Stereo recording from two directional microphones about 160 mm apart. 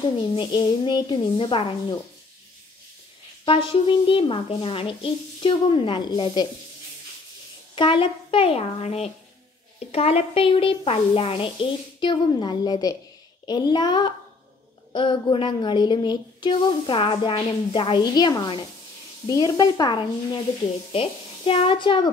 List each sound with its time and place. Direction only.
0.4 s speech: 25° left (ahead or behind)
3.4 s a woman's voice: 35° left (ahead or behind)
7.7 s a woman's voice: 35° left (ahead or behind)